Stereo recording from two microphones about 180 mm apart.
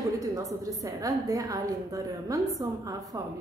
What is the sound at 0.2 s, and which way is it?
A woman's voice, 20° right (ahead or behind).